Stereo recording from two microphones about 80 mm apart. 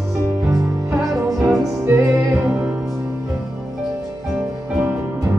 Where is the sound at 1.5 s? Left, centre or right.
Right.